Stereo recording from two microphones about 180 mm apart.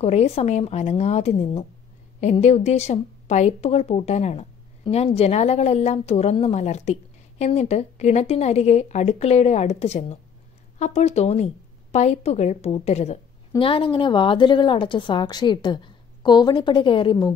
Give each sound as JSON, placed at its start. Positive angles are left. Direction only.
{"t": 0.0, "sound": "a woman's voice", "side_deg": 35}